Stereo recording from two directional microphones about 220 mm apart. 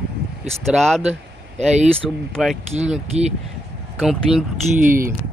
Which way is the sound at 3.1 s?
30° right (ahead or behind).